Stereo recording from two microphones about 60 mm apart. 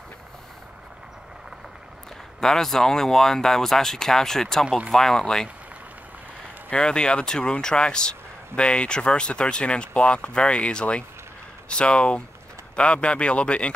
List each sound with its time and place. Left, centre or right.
2.4 s speech: centre
6.7 s speech: centre